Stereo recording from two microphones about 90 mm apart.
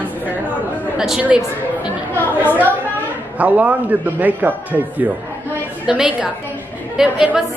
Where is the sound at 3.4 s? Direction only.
15° right (ahead or behind).